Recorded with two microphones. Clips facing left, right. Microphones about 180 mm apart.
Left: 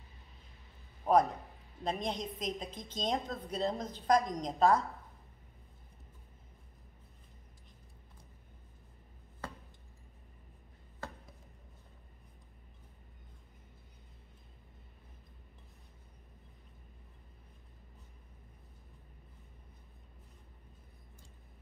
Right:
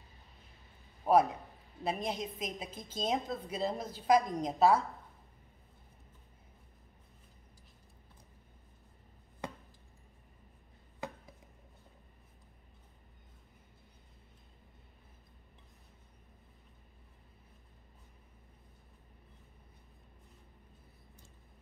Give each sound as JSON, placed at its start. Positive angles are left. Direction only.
{"t": 1.0, "sound": "a woman's voice", "side_deg": -5}
{"t": 11.0, "sound": "chopping", "side_deg": -15}